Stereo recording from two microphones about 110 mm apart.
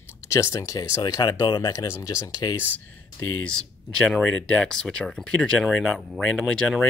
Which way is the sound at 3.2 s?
10° left (ahead or behind).